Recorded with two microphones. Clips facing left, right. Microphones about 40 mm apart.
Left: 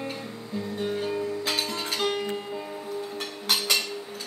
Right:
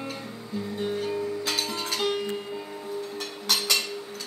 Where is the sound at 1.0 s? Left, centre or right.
Centre.